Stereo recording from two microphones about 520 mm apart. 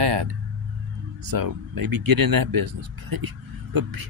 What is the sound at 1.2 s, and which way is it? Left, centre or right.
Speech, right.